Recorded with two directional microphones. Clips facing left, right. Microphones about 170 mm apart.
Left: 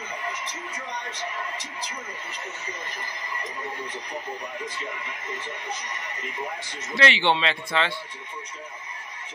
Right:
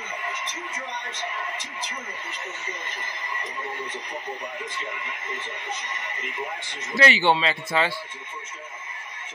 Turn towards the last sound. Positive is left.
turn(degrees=-5)  # may be behind; listen again after turning